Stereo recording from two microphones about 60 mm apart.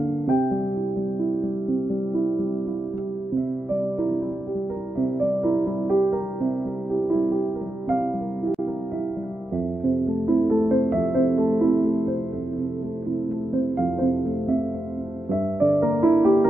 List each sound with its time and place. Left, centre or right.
0.3 s music: centre
5.0 s music: centre
5.5 s music: right
10.2 s music: right
13.9 s music: right
15.6 s music: centre
16.0 s music: right